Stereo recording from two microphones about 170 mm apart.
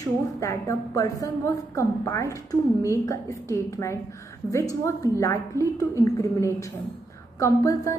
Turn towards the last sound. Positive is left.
turn(degrees=20)  # may be behind; listen again after turning